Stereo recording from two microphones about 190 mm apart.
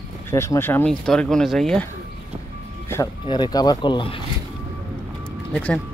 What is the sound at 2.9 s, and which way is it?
Speech, 20° left (ahead or behind).